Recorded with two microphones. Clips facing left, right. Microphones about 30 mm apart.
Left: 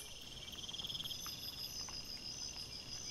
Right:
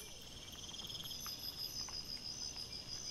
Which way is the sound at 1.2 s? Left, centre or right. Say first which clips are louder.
Even; centre.